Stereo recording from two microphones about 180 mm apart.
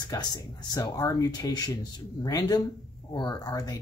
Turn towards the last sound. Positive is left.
turn(degrees=20)  # may be behind; listen again after turning